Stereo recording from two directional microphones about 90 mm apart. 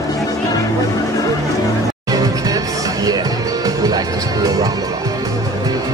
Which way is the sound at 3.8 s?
45° right (ahead or behind).